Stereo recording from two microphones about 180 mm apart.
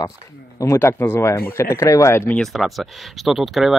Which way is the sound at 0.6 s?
15° left (ahead or behind).